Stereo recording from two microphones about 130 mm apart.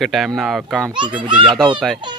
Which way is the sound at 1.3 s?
40° right (ahead or behind).